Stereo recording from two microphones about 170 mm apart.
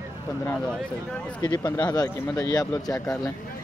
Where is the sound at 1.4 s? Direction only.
25° left (ahead or behind).